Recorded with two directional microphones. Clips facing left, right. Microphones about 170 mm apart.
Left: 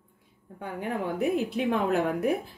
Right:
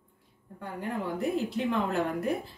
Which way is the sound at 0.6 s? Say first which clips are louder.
Left 3 dB; 65° left (ahead or behind).